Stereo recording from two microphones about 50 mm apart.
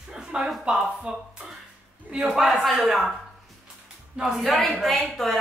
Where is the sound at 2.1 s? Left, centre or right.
Centre.